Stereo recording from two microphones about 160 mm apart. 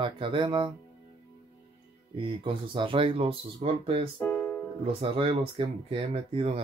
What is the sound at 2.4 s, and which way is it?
Speech, 35° right (ahead or behind).